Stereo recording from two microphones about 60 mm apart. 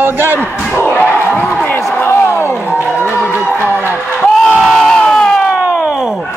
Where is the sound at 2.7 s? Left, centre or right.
Left.